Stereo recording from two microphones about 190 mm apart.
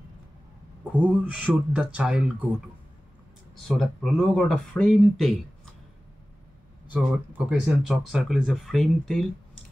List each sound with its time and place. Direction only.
0.9 s speech: 5° right (ahead or behind)
3.6 s speech: centre (ahead or behind)
6.9 s speech: 5° right (ahead or behind)